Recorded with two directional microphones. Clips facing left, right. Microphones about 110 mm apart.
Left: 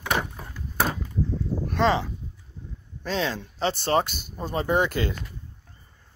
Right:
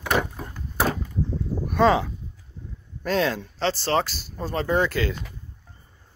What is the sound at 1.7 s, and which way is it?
Speech, 5° right (ahead or behind).